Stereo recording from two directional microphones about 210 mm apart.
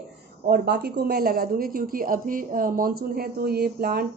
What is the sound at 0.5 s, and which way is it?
A woman's voice, 50° right (ahead or behind).